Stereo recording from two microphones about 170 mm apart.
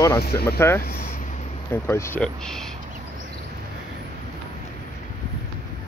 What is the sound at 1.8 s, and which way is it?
Speech, 15° left (ahead or behind).